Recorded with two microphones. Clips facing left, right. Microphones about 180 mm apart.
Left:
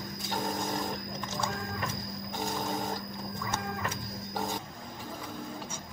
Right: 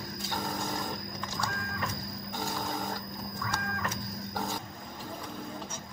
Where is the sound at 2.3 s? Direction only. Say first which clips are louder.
Left 2 dB; 20° left (ahead or behind).